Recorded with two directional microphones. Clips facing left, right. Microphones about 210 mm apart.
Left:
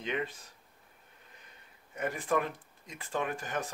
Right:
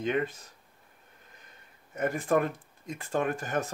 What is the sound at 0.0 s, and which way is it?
Speech, 45° right (ahead or behind).